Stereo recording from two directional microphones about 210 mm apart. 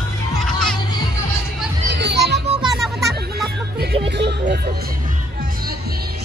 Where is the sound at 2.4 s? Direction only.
30° right (ahead or behind).